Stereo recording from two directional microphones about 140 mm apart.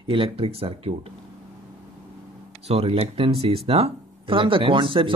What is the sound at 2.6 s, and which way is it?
Speech, 45° right (ahead or behind).